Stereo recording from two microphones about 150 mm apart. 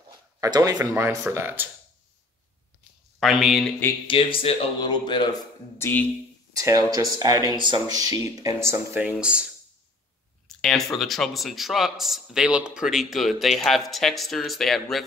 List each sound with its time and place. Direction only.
0.4 s speech: 25° right (ahead or behind)
3.2 s speech: centre (ahead or behind)
4.1 s speech: 35° left (ahead or behind)
5.8 s speech: 10° left (ahead or behind)
6.5 s speech: 25° right (ahead or behind); by 9.5 s 5° right (ahead or behind)
10.6 s speech: centre (ahead or behind)